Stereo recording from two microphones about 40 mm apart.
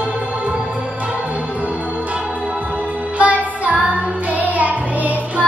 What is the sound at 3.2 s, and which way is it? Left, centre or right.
Music, right.